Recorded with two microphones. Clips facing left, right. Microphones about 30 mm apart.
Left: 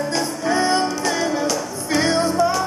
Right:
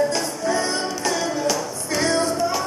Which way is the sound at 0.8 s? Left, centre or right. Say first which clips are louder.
Left 2 dB; centre.